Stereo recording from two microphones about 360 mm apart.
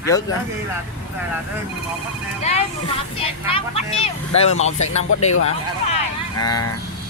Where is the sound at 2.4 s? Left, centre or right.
Centre.